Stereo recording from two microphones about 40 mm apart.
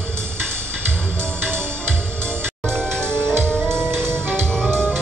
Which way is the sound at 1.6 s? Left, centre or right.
Right.